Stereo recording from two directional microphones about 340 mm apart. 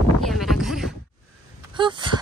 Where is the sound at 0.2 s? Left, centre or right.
Centre.